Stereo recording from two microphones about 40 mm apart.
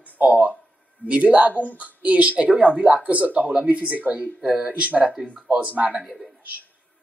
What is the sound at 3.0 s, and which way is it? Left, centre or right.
A woman's voice, right.